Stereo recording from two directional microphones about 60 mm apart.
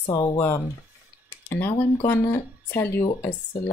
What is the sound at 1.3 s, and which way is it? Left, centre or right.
Speech, left.